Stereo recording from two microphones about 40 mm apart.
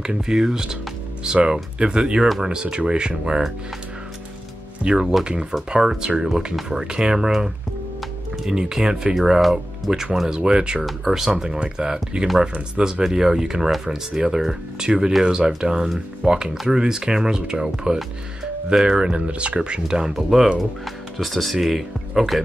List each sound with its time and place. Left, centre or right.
0.0 s speech: centre
4.8 s speech: centre
6.8 s speech: centre
11.1 s speech: centre
11.4 s speech: right
17.9 s speech: right; by 20.4 s centre
20.8 s speech: centre